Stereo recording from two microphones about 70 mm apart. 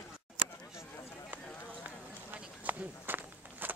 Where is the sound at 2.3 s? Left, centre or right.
Right.